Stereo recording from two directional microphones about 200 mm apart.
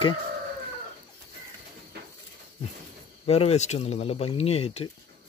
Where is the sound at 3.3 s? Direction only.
30° left (ahead or behind).